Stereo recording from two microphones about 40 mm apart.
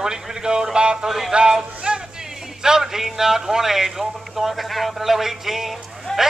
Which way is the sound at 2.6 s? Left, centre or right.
Centre.